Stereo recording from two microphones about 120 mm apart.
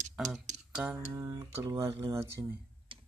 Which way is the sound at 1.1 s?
25° right (ahead or behind).